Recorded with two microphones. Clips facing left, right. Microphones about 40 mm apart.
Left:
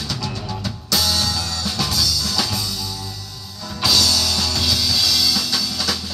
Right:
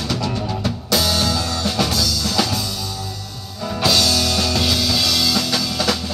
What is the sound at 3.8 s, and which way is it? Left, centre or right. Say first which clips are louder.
Music: right 1 dB; centre.